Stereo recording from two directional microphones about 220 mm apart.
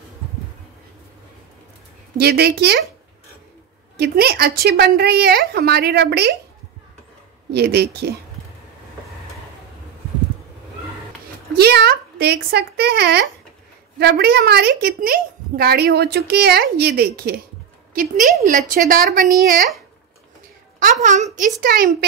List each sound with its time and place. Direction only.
2.1 s a woman's voice: 45° right (ahead or behind)
3.9 s a woman's voice: 45° right (ahead or behind)
7.5 s a woman's voice: 45° right (ahead or behind)
11.5 s a woman's voice: 45° right (ahead or behind)
20.8 s a woman's voice: 35° right (ahead or behind)